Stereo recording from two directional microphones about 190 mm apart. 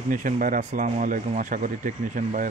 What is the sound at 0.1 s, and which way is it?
Speech, 45° right (ahead or behind).